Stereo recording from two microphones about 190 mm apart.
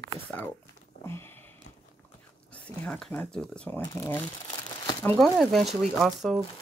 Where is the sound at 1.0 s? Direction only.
15° left (ahead or behind).